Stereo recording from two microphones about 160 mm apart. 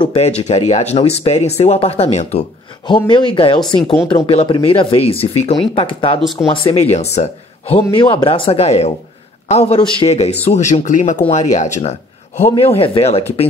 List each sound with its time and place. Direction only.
0.0 s speech: 35° left (ahead or behind)
2.9 s speech: 30° left (ahead or behind)